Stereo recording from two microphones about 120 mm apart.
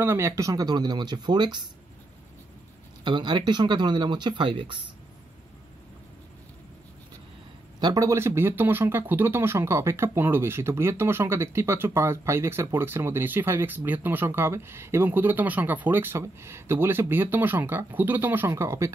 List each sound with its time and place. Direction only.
0.0 s speech: 20° right (ahead or behind); by 1.6 s 40° right (ahead or behind)
3.0 s speech: 40° right (ahead or behind)
7.8 s speech: 30° right (ahead or behind)